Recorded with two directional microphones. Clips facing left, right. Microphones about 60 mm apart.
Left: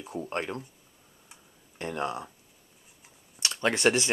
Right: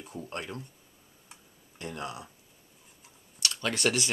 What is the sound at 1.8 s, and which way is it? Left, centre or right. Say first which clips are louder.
Speech: left 6 dB; left.